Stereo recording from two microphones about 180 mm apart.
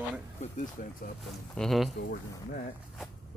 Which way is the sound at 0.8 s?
50° left (ahead or behind).